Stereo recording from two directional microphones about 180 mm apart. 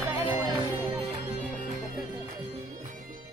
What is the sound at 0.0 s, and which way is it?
Music, 10° right (ahead or behind).